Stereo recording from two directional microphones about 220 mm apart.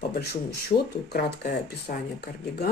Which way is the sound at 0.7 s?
45° left (ahead or behind).